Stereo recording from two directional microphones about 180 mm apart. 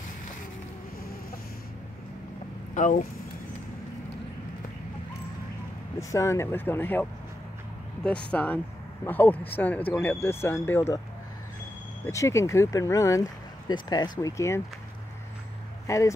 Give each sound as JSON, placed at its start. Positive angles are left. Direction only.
{"t": 2.7, "sound": "speech", "side_deg": 45}
{"t": 5.9, "sound": "speech", "side_deg": 15}
{"t": 8.3, "sound": "speech", "side_deg": 10}
{"t": 12.1, "sound": "speech", "side_deg": 15}
{"t": 15.9, "sound": "speech", "side_deg": 15}